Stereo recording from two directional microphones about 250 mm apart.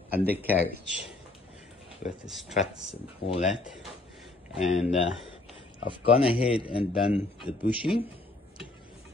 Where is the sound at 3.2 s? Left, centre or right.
Left.